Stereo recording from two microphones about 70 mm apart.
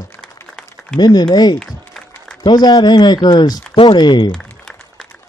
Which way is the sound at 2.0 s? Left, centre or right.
Centre.